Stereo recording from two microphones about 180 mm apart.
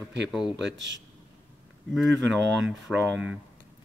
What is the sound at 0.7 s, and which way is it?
Speech, 90° right.